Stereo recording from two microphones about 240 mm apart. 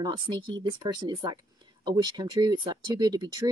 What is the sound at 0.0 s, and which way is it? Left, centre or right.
Speech, centre.